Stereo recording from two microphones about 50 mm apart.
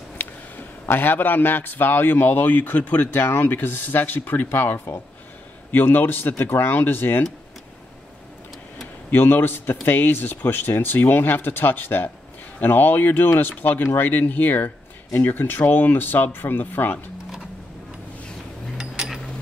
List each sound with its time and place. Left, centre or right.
0.2 s a man's voice: left
9.1 s speech: left
19.0 s mechanisms: centre